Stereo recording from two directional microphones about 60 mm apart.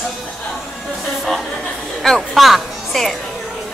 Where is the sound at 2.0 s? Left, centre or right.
Centre.